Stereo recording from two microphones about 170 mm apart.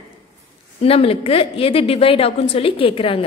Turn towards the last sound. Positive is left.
turn(degrees=30)  # may be behind; listen again after turning